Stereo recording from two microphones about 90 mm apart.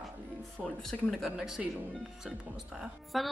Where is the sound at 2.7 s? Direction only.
Centre (ahead or behind).